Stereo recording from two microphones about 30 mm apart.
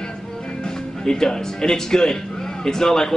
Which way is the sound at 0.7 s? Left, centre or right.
Centre.